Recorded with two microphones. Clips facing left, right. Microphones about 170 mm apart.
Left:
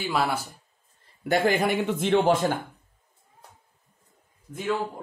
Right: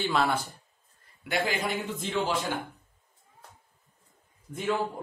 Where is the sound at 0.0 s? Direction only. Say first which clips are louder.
Even; 5° left (ahead or behind).